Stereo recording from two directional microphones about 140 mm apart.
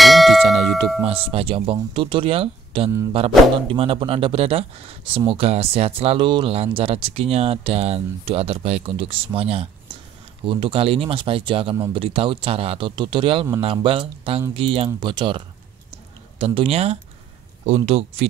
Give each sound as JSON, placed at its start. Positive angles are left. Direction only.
{"t": 0.0, "sound": "clang", "side_deg": 0}
{"t": 1.0, "sound": "speech", "side_deg": -45}